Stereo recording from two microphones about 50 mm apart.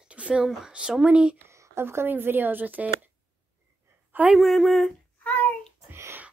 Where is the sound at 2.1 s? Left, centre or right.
Right.